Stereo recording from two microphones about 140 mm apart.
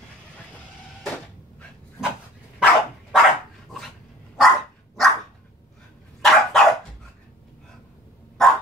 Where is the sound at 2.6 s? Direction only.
5° left (ahead or behind).